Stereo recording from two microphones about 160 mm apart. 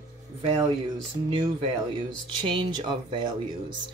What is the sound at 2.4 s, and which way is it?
Speech, 30° right (ahead or behind).